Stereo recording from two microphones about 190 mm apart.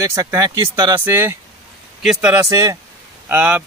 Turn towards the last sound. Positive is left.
turn(degrees=-10)  # may be behind; listen again after turning